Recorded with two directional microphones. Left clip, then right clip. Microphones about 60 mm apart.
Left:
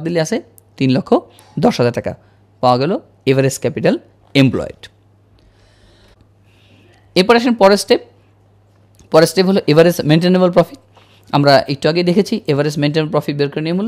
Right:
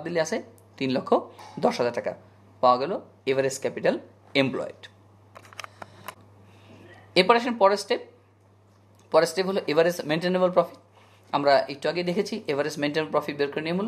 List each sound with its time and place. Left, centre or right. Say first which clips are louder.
0.0 s speech: left 9 dB; left
6.7 s speech: left 7 dB; left
9.1 s speech: left 10 dB; left